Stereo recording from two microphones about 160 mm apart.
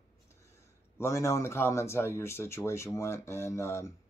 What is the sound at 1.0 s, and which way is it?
Speech, 15° left (ahead or behind).